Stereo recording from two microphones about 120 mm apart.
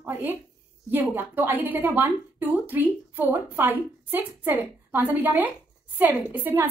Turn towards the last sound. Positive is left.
turn(degrees=-15)  # may be behind; listen again after turning